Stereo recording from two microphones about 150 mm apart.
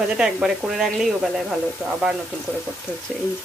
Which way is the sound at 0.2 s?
Centre (ahead or behind).